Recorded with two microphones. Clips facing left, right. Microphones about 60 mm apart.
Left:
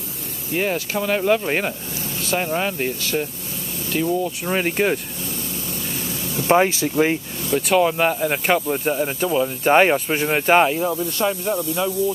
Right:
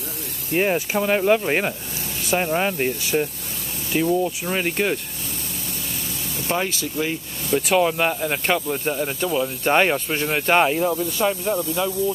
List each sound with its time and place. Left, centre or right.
0.6 s speech: centre
4.1 s speech: centre
6.4 s speech: left
7.5 s speech: centre